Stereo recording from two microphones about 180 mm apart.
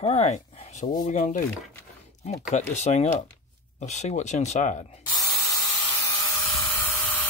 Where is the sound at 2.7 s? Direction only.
40° left (ahead or behind).